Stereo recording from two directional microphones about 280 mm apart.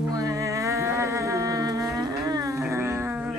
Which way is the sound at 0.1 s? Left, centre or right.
Centre.